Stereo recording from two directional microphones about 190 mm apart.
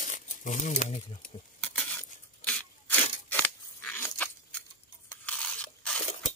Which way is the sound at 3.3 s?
10° left (ahead or behind).